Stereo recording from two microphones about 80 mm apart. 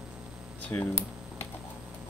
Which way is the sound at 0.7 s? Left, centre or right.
Left.